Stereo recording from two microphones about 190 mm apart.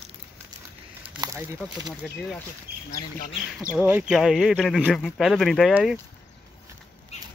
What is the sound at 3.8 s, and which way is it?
Speech, 5° right (ahead or behind).